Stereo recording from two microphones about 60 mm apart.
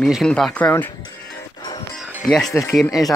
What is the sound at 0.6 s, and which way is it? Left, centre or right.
Speech, left.